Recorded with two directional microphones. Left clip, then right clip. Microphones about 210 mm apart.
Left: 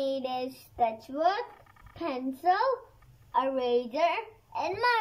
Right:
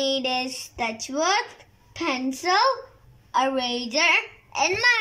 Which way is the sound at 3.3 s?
20° left (ahead or behind).